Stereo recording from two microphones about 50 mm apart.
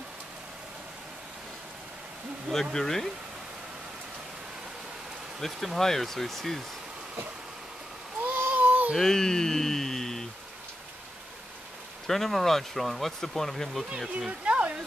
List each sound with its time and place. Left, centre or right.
2.5 s speech: centre
5.4 s speech: centre
8.5 s a sound: right
8.9 s speech: centre
12.1 s speech: centre
13.8 s speech: centre
14.4 s a sound: right